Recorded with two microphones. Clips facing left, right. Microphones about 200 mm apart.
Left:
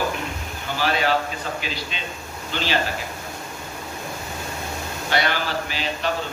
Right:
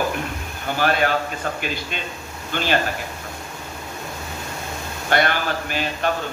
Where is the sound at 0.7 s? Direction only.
50° right (ahead or behind).